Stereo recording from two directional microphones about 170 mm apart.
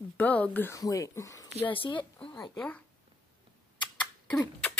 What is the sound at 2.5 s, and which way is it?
Speech, 5° left (ahead or behind).